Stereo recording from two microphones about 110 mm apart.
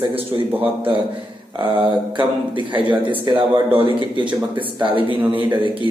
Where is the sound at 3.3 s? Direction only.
40° right (ahead or behind).